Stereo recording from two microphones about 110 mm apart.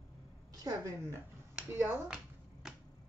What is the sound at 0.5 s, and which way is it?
Speech, 35° right (ahead or behind).